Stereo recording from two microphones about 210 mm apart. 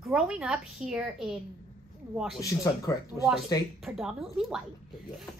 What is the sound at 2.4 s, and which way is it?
Speech, 15° left (ahead or behind).